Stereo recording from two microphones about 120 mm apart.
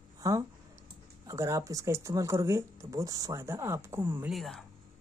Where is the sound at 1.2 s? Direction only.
25° right (ahead or behind).